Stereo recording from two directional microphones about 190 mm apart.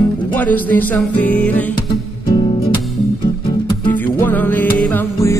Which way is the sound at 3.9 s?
10° left (ahead or behind).